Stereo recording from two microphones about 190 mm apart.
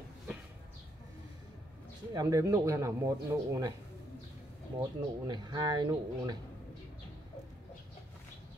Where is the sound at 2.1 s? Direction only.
20° right (ahead or behind).